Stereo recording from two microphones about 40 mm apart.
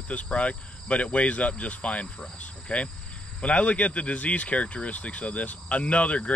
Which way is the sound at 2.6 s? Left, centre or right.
Left.